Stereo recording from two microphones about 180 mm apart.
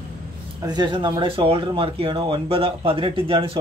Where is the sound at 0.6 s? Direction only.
25° right (ahead or behind).